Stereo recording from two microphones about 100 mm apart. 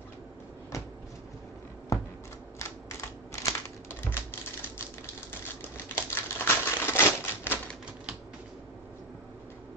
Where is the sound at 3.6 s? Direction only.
25° left (ahead or behind).